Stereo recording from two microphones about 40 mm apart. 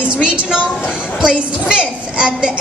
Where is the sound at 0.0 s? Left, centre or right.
Right.